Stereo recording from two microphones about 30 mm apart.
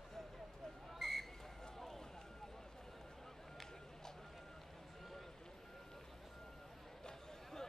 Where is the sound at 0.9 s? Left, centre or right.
Centre.